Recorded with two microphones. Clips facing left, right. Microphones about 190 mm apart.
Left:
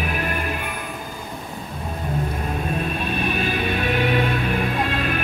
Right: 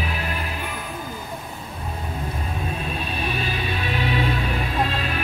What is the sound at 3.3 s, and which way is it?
Music, 55° left (ahead or behind).